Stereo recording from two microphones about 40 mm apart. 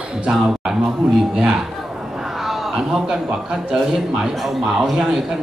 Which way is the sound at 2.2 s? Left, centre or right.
Centre.